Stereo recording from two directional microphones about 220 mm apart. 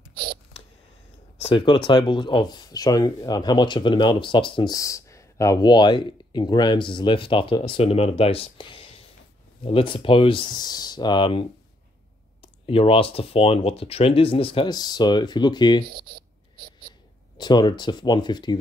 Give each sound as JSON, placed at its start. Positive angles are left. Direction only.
{"t": 1.4, "sound": "speech", "side_deg": 20}
{"t": 17.4, "sound": "speech", "side_deg": 20}